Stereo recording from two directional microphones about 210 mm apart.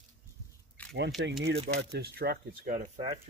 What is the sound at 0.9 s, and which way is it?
Speech, 55° right (ahead or behind).